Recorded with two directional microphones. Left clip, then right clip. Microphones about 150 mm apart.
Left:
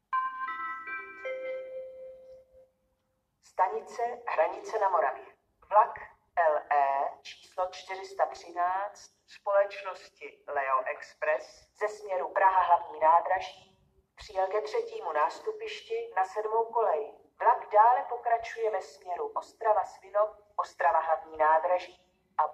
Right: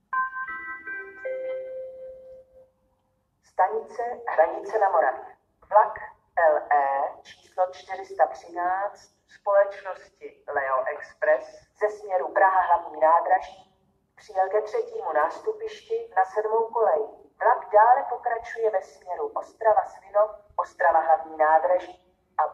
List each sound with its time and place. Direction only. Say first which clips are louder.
0.7 s music: right 2 dB; 30° left (ahead or behind)
3.5 s a woman's voice: right 5 dB; 25° left (ahead or behind)
5.7 s a sound: right 4 dB; 25° left (ahead or behind)
9.4 s speech: right 6 dB; 25° left (ahead or behind)